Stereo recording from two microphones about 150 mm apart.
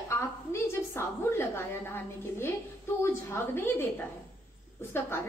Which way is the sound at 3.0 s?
15° left (ahead or behind).